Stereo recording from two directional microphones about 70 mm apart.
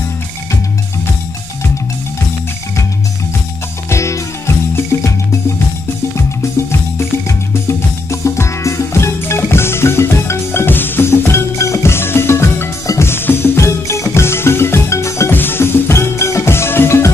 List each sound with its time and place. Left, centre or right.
3.9 s music: left
7.0 s music: left
15.3 s music: left